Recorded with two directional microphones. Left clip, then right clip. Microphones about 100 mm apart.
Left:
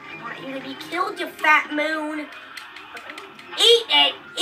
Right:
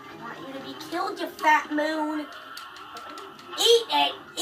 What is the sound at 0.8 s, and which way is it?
A woman's voice, 20° right (ahead or behind).